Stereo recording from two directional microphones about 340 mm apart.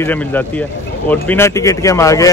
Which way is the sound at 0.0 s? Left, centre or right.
Centre.